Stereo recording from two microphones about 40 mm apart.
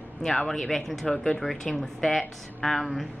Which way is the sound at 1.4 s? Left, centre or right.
Centre.